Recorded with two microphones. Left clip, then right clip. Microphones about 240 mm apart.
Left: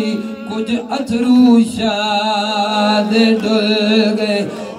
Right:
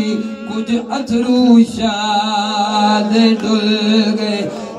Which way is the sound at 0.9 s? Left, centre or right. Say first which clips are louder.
Left 1 dB; left.